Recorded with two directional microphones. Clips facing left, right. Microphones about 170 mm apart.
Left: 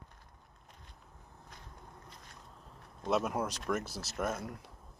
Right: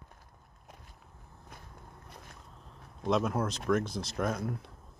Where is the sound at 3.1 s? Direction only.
10° left (ahead or behind).